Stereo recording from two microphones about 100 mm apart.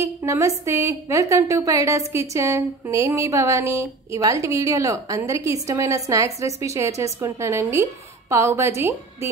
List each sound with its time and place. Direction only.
0.0 s a woman's voice: 30° right (ahead or behind)